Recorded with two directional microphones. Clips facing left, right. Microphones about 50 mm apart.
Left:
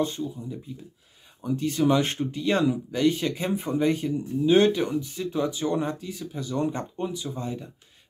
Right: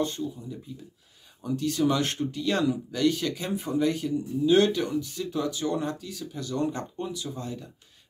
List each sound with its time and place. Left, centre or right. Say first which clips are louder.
0.0 s speech: left 2 dB; centre